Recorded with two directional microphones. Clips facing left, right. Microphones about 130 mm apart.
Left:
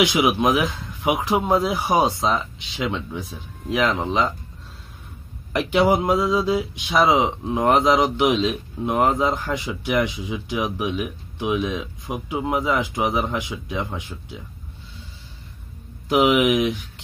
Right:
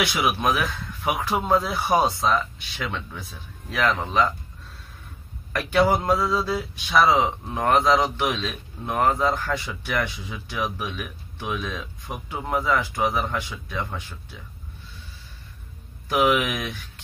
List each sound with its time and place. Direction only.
0.0 s speech: 20° left (ahead or behind)
5.5 s speech: 20° left (ahead or behind)
16.1 s speech: 20° left (ahead or behind)